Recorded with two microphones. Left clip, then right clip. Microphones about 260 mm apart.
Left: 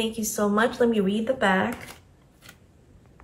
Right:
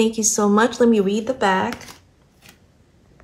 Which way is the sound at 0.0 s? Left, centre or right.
Right.